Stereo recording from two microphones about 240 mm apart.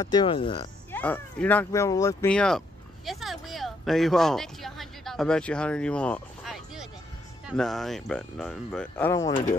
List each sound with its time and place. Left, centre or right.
0.0 s speech: centre
0.9 s speech: centre